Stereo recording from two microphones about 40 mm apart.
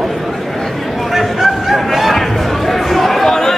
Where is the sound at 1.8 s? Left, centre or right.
Centre.